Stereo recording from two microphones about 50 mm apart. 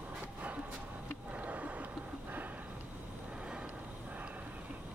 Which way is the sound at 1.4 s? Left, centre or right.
Right.